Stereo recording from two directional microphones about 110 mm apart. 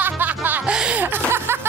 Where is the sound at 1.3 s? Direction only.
20° right (ahead or behind).